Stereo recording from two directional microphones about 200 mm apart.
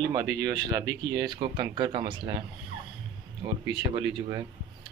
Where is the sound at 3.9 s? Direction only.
20° right (ahead or behind).